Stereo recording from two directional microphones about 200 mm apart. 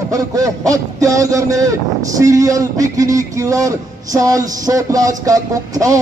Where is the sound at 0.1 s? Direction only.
15° right (ahead or behind).